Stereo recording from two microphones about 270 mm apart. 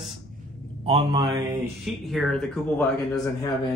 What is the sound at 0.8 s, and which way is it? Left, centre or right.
Speech, centre.